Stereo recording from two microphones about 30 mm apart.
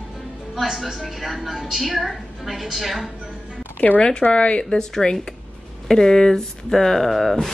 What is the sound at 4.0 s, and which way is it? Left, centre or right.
Speech, left.